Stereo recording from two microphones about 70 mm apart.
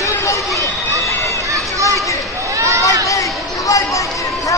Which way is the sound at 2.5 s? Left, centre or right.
Right.